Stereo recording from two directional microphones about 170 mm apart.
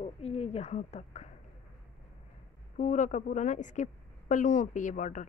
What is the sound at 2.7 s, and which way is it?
A woman's voice, 45° left (ahead or behind).